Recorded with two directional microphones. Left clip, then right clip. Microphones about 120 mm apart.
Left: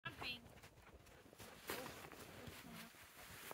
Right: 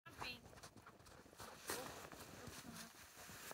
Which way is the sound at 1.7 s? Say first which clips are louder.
Even; 55° left (ahead or behind).